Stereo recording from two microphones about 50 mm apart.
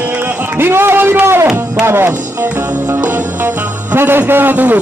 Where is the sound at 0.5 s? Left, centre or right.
Right.